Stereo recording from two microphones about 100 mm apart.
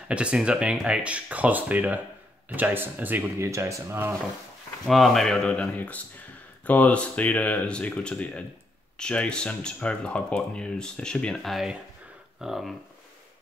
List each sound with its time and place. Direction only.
0.1 s speech: 10° right (ahead or behind); by 4.1 s 25° right (ahead or behind)
4.8 s speech: centre (ahead or behind)